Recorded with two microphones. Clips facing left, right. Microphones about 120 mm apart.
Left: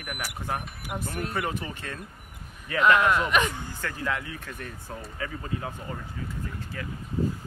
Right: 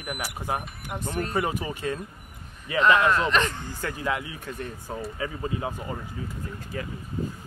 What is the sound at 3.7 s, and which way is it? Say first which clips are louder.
Speech: right 2 dB; 15° right (ahead or behind).